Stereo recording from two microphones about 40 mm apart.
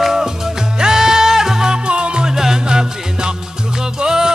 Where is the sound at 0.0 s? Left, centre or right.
Centre.